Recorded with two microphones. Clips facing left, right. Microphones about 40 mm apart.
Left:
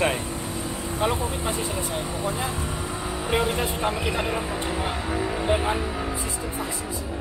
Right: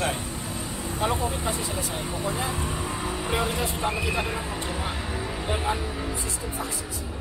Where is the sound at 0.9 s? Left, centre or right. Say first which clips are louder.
Left 1 dB; centre.